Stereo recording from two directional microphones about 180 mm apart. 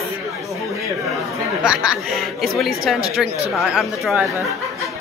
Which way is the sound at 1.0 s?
Centre (ahead or behind).